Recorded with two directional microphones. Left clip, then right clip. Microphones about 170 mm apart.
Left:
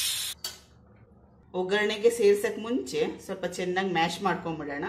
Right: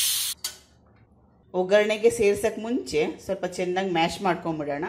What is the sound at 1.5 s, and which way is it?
A woman's voice, 25° right (ahead or behind).